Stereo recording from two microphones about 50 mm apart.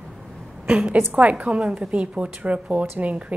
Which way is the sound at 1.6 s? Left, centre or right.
Right.